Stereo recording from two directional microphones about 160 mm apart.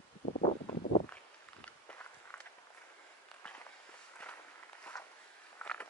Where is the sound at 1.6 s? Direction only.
10° left (ahead or behind).